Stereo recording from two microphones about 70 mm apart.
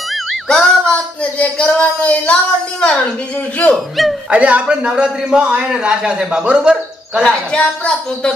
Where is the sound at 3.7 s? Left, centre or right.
Centre.